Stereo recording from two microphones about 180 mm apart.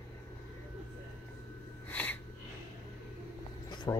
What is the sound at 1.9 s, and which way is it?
Sneeze, 10° left (ahead or behind).